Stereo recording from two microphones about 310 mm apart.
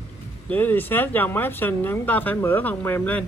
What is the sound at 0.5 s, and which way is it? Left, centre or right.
Speech, centre.